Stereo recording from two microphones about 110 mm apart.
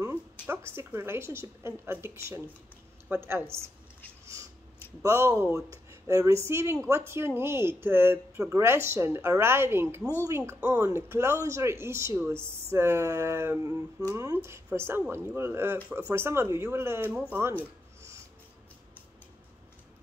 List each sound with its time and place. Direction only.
0.0 s a woman's voice: 20° right (ahead or behind)
5.0 s a woman's voice: 30° right (ahead or behind)